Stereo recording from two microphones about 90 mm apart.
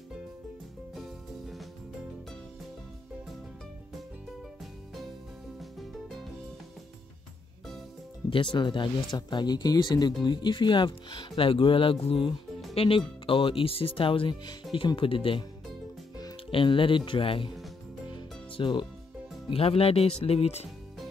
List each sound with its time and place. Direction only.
0.9 s music: centre (ahead or behind)
5.6 s music: centre (ahead or behind)
8.3 s speech: 70° left (ahead or behind)
15.0 s speech: 85° left
16.4 s speech: 75° left (ahead or behind)
18.1 s music: 60° left (ahead or behind)
19.5 s speech: 90° left